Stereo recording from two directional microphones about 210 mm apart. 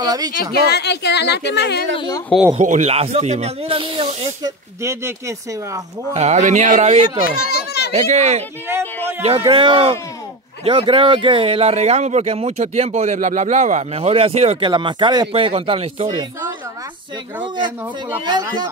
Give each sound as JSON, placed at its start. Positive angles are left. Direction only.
{"t": 0.0, "sound": "speech", "side_deg": -20}
{"t": 0.5, "sound": "speech", "side_deg": 50}
{"t": 2.0, "sound": "speech", "side_deg": 20}
{"t": 2.5, "sound": "speech", "side_deg": -35}
{"t": 6.1, "sound": "speech", "side_deg": -35}
{"t": 7.3, "sound": "children playing", "side_deg": 50}
{"t": 7.9, "sound": "speech", "side_deg": -35}
{"t": 8.6, "sound": "a sound", "side_deg": -10}
{"t": 9.5, "sound": "speech", "side_deg": -25}
{"t": 17.4, "sound": "speech", "side_deg": -20}